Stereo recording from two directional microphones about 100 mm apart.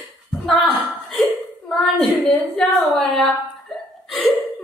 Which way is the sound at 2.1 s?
Centre (ahead or behind).